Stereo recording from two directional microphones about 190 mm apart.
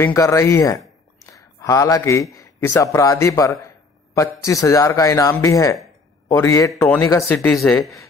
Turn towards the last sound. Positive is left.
turn(degrees=5)  # may be behind; listen again after turning